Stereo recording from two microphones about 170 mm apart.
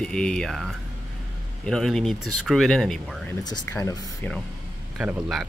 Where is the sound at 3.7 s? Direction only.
20° left (ahead or behind).